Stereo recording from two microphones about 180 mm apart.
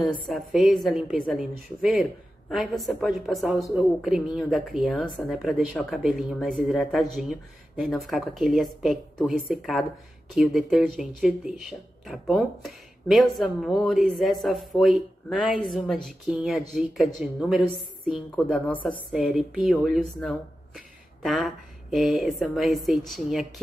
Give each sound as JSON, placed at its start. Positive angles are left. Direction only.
{"t": 0.0, "sound": "speech", "side_deg": 0}
{"t": 19.2, "sound": "speech", "side_deg": -5}